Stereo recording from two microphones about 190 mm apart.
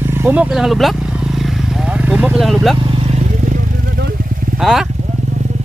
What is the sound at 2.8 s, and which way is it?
Vehicle, 30° right (ahead or behind).